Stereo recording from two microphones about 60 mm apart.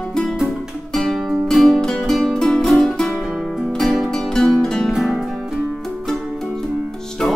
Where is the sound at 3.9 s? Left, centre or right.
Centre.